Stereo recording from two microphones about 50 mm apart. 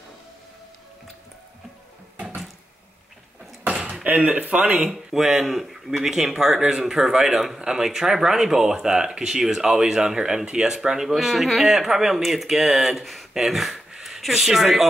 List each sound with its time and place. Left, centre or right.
3.8 s speech: right
5.1 s speech: centre
13.3 s a sound: centre
14.2 s speech: centre